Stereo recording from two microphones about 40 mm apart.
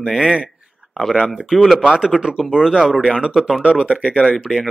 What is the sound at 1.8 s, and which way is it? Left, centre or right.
Speech, centre.